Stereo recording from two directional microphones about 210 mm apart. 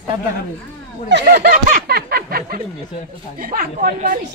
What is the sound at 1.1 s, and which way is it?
Speech, 55° right (ahead or behind).